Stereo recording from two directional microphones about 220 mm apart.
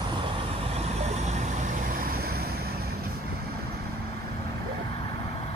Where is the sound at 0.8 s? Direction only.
30° right (ahead or behind).